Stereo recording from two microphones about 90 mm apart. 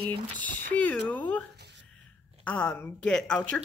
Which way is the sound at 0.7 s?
15° left (ahead or behind).